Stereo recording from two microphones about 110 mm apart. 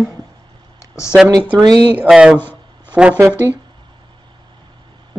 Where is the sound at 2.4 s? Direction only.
20° left (ahead or behind).